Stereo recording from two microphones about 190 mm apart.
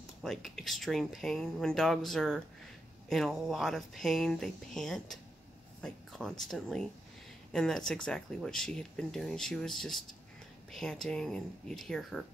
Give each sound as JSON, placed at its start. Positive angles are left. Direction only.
{"t": 0.2, "sound": "speech", "side_deg": 0}